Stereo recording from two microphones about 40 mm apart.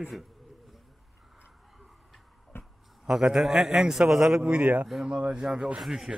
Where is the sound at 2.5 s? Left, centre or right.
Left.